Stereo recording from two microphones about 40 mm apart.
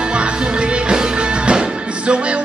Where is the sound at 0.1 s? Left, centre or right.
Right.